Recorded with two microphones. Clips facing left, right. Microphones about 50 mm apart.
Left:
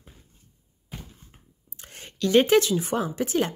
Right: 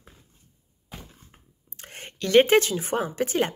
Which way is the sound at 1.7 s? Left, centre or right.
Right.